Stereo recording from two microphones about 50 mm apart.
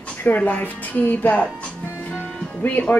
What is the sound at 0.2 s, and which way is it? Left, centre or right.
Speech, left.